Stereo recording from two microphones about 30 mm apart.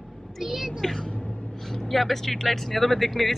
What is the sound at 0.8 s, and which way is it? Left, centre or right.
Speech, centre.